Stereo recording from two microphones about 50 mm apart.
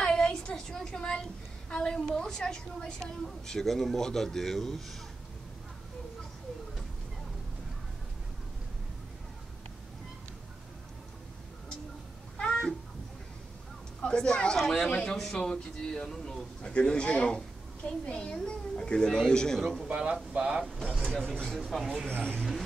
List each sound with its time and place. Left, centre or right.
0.0 s a sound: centre
2.0 s a woman's voice: centre
12.4 s cat: centre
14.0 s a man's voice: centre
14.6 s a woman's voice: centre
19.6 s a man's voice: centre
19.9 s speech: right
21.0 s a woman's voice: centre
21.4 s speech: centre